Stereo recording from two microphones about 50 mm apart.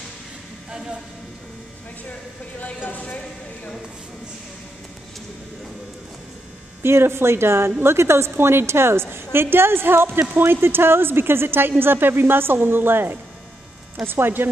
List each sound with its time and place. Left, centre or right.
2.6 s speech: left
6.8 s a woman's voice: right